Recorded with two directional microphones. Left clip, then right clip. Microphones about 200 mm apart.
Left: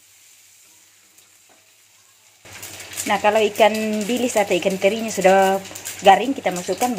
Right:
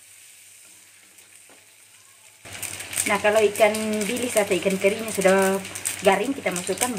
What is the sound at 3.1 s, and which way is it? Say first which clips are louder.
Speech: left 2 dB; 30° left (ahead or behind).